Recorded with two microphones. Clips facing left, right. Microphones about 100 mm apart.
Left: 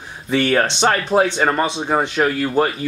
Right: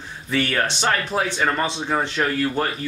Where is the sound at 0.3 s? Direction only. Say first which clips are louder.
Left 5 dB; 25° left (ahead or behind).